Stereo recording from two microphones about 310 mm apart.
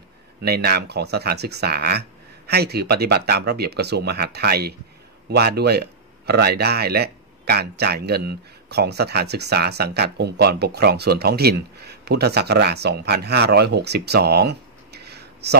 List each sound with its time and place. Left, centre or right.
0.4 s speech: right